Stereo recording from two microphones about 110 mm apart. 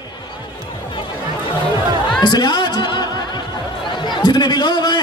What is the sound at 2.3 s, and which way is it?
Speech, 40° left (ahead or behind).